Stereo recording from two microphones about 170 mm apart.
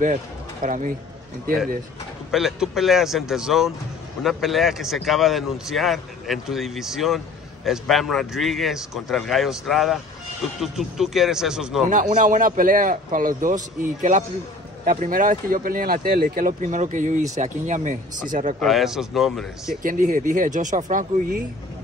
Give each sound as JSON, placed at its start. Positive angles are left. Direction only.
{"t": 0.0, "sound": "speech", "side_deg": -50}
{"t": 2.3, "sound": "speech", "side_deg": 0}
{"t": 11.9, "sound": "speech", "side_deg": -50}
{"t": 14.9, "sound": "speech", "side_deg": -50}
{"t": 18.6, "sound": "speech", "side_deg": 0}
{"t": 19.8, "sound": "speech", "side_deg": -50}